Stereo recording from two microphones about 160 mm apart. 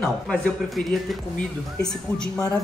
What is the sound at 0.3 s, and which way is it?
Speech, centre (ahead or behind).